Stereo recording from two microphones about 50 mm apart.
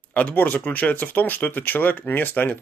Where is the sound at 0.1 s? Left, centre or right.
Left.